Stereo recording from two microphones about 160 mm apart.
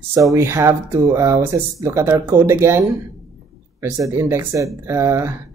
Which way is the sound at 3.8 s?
20° right (ahead or behind).